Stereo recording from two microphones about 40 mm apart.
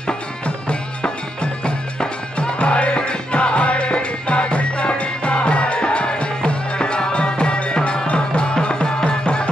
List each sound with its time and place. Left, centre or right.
0.7 s music: left